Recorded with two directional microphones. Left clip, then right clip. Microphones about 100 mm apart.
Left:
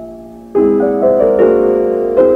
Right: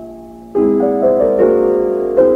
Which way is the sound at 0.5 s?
25° left (ahead or behind).